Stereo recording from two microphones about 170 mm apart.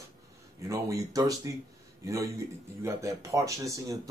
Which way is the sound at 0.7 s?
20° right (ahead or behind).